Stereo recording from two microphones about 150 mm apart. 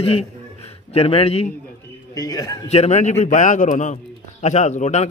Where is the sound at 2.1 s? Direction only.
25° left (ahead or behind).